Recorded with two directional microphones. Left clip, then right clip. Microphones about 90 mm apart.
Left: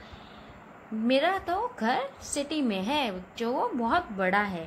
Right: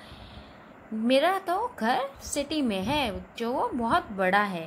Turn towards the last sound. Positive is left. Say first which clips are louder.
# right 2 dB
turn(degrees=-20)  # may be behind; listen again after turning